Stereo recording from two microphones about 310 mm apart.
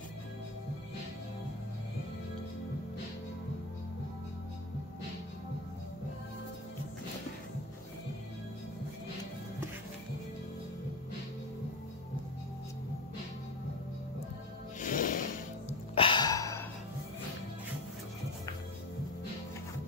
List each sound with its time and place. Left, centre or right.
14.8 s music: left
15.9 s music: centre